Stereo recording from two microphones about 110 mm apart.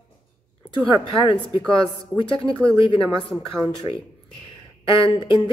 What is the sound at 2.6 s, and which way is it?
Speech, 10° left (ahead or behind).